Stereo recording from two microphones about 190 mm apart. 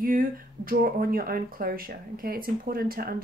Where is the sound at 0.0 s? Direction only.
50° right (ahead or behind).